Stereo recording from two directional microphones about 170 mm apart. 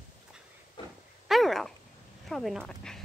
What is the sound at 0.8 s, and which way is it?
Dog, 30° left (ahead or behind).